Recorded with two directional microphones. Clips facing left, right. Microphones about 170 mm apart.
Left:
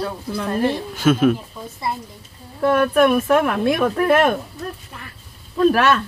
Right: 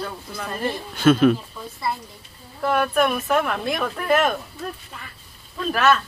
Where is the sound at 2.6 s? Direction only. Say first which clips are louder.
Left 5 dB; 55° left (ahead or behind).